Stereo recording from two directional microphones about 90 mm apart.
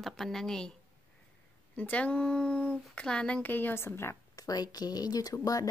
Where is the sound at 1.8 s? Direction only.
15° left (ahead or behind).